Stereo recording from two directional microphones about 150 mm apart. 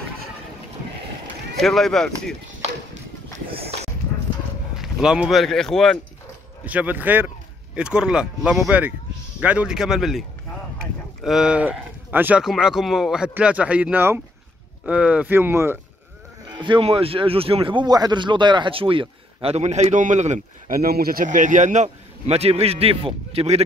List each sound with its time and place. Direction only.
1.6 s speech: 5° left (ahead or behind)
4.8 s speech: 5° right (ahead or behind)
6.6 s speech: 10° right (ahead or behind)
11.2 s speech: 5° right (ahead or behind)
16.4 s speech: 30° right (ahead or behind)